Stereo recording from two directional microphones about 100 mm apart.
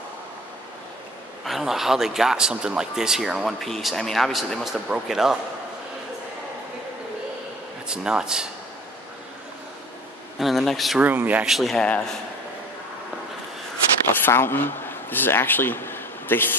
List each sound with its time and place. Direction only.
1.4 s a man's voice: centre (ahead or behind)
7.9 s speech: 10° right (ahead or behind)
10.4 s a man's voice: centre (ahead or behind)
11.0 s speech: 15° right (ahead or behind)
11.4 s a man's voice: centre (ahead or behind)
14.2 s speech: 20° left (ahead or behind)